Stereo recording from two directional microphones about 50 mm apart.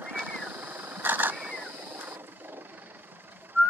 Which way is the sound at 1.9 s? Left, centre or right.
Right.